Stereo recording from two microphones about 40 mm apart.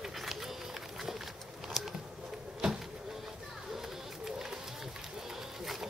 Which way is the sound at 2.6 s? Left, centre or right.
Centre.